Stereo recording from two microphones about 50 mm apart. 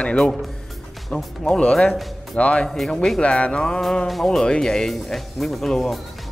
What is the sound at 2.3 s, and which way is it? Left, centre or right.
Speech, left.